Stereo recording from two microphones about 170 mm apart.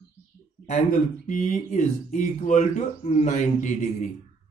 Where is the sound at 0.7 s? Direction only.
45° left (ahead or behind).